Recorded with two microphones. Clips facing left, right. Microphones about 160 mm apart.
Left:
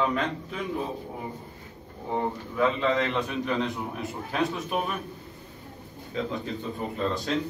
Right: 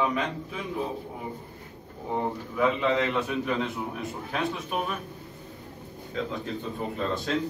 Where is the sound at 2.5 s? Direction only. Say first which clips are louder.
Even; 5° right (ahead or behind).